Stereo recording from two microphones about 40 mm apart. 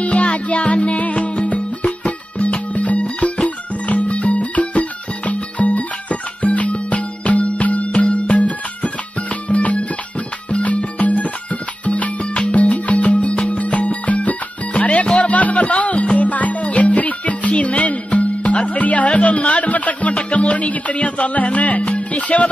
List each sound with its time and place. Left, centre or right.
0.0 s music: left